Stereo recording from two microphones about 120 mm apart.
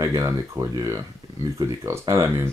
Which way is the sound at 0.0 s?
30° right (ahead or behind).